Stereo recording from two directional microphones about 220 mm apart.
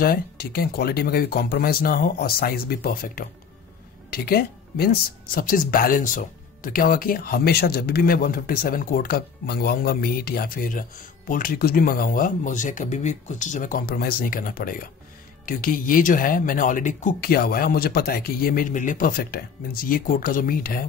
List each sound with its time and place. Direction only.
0.0 s speech: 45° left (ahead or behind)